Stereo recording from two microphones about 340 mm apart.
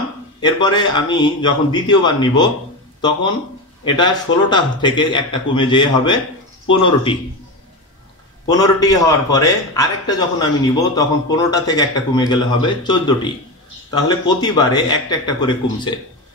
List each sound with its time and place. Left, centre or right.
0.4 s a man's voice: centre
3.8 s a man's voice: centre
8.5 s a man's voice: centre